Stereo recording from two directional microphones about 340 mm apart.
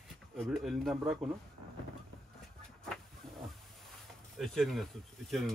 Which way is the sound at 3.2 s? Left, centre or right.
Centre.